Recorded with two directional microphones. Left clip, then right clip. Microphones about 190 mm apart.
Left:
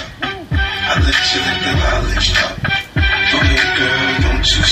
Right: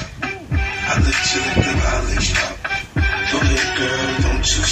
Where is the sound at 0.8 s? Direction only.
20° left (ahead or behind).